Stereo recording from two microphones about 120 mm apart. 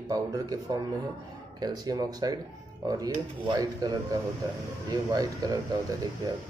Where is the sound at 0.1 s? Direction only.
30° right (ahead or behind).